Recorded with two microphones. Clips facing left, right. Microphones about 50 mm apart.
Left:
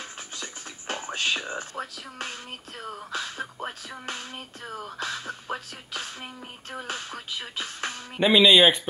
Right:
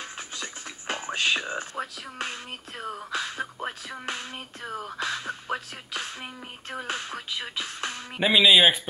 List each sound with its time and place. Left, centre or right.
0.0 s music: right
2.1 s speech: right
8.2 s speech: centre